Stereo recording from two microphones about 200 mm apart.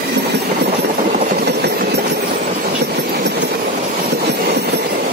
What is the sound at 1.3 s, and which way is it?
Engine, 55° right (ahead or behind).